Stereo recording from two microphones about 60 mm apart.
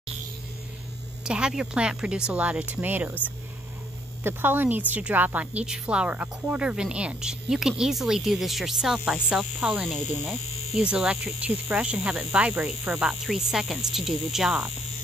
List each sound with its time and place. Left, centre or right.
1.2 s speech: centre; by 3.2 s right
4.2 s a woman's voice: right; by 9.4 s centre
9.6 s a woman's voice: right
9.8 s hum: centre
11.0 s speech: centre